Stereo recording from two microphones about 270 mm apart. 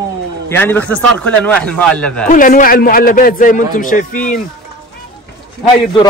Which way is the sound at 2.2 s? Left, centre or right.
Left.